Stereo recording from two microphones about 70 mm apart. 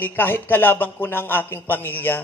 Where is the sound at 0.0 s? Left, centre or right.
Left.